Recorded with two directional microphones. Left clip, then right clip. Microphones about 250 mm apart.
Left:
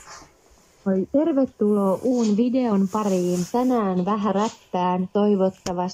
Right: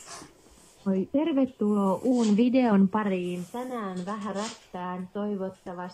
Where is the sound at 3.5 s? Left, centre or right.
Left.